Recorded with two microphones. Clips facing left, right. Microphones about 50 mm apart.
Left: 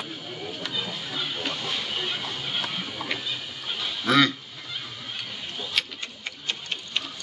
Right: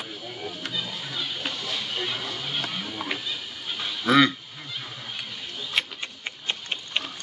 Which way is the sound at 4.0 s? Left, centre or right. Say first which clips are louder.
Right 2 dB; centre.